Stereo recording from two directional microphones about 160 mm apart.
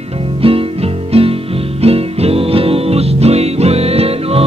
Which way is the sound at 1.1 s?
40° right (ahead or behind).